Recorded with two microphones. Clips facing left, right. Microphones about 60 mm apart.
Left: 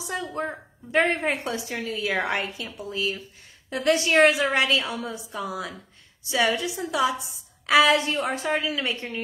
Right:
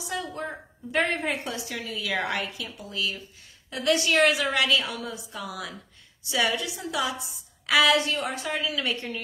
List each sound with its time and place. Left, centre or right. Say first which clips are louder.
0.0 s a woman's voice: left 3 dB; left